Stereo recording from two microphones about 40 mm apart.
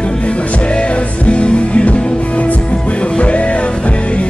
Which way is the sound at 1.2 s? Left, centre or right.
Left.